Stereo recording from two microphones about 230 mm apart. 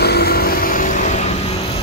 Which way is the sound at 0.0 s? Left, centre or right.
Left.